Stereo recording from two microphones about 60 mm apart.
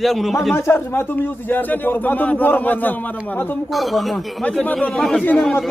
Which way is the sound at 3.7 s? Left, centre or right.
Centre.